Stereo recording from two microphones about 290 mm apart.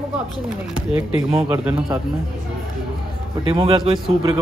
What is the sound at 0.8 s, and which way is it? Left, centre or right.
Speech, centre.